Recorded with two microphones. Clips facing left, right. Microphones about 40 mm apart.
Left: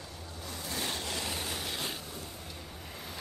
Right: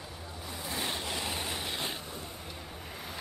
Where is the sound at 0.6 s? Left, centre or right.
Right.